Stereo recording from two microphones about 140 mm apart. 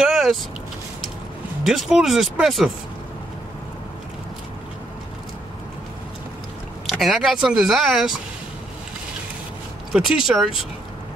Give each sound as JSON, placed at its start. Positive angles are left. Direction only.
{"t": 0.0, "sound": "vehicle", "side_deg": -5}
{"t": 1.6, "sound": "speech", "side_deg": -5}
{"t": 6.9, "sound": "speech", "side_deg": 0}
{"t": 9.9, "sound": "speech", "side_deg": -5}